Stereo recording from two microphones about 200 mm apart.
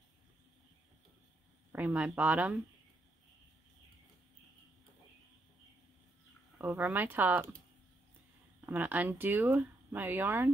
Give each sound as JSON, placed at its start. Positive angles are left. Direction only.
{"t": 1.7, "sound": "speech", "side_deg": -10}
{"t": 6.6, "sound": "speech", "side_deg": -10}
{"t": 8.5, "sound": "speech", "side_deg": -10}